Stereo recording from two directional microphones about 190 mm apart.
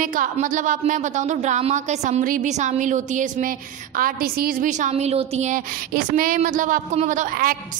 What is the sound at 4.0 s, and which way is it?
A woman's voice, 50° right (ahead or behind).